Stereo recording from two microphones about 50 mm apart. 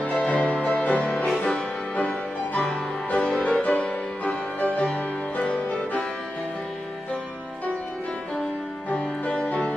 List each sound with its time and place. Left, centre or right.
0.2 s music: left
5.4 s music: centre
8.9 s music: left